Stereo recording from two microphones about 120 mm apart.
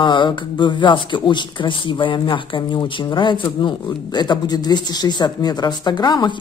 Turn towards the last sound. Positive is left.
turn(degrees=35)  # may be behind; listen again after turning